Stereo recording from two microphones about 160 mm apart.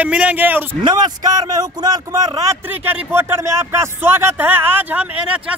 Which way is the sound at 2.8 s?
10° right (ahead or behind).